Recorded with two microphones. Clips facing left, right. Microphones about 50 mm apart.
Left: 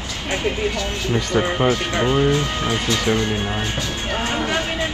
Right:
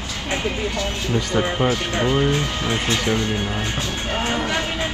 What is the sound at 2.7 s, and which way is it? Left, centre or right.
Speech, right.